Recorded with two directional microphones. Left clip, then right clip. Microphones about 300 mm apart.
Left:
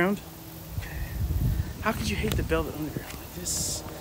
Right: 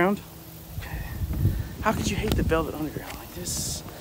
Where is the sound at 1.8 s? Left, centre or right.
Centre.